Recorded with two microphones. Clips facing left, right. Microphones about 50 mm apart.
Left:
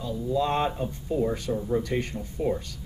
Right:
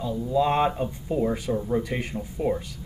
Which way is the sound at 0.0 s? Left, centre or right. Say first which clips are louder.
Right 3 dB; centre.